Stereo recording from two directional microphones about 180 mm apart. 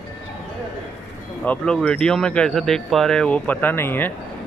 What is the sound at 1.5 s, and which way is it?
Speech, 5° left (ahead or behind).